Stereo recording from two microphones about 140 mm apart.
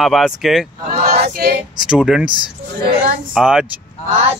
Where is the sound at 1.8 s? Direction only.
5° right (ahead or behind).